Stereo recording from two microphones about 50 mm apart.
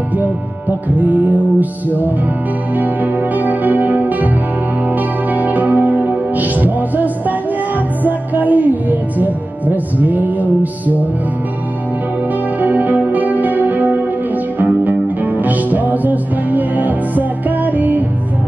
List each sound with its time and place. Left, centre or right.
0.2 s music: right
5.3 s music: right
12.5 s music: right